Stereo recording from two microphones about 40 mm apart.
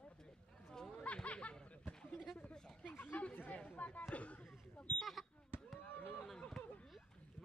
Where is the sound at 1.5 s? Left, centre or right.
Left.